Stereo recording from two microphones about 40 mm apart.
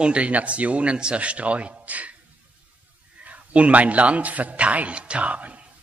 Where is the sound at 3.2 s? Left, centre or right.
Right.